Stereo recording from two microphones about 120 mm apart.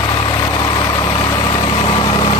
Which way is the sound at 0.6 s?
40° left (ahead or behind).